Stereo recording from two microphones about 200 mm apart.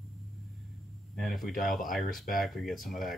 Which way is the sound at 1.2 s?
Centre (ahead or behind).